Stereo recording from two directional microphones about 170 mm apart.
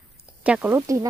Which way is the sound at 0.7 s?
20° right (ahead or behind).